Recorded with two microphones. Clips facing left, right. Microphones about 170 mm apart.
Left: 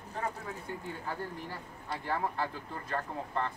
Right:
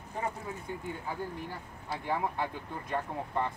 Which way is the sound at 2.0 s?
15° right (ahead or behind).